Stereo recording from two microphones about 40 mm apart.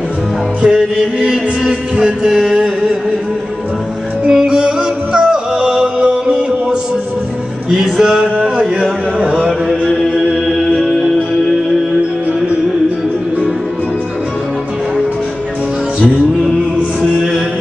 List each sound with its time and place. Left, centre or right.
0.6 s music: centre
4.3 s music: centre
8.0 s a sound: centre
10.8 s music: centre